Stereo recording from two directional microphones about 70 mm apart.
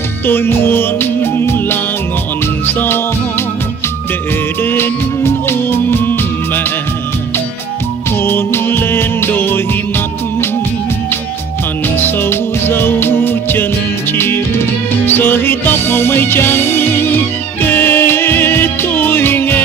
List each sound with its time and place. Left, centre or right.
0.3 s music: left
4.6 s music: left
8.2 s music: left
12.0 s music: left